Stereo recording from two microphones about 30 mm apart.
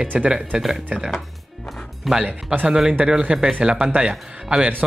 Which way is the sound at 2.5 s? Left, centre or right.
Right.